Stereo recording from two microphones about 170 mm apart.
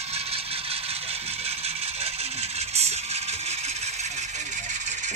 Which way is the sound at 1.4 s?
35° right (ahead or behind).